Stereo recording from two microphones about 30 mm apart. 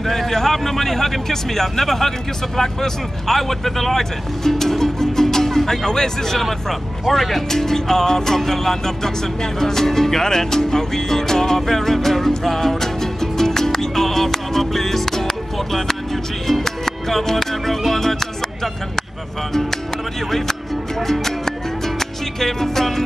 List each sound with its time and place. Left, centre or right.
0.0 s a man's voice: centre
6.4 s speech: centre
7.4 s a man's voice: centre
10.2 s music: centre
20.2 s a man's voice: centre
21.1 s music: centre
22.4 s a man's voice: centre